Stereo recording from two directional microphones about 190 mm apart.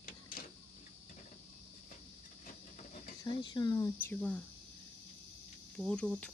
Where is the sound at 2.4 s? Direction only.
40° left (ahead or behind).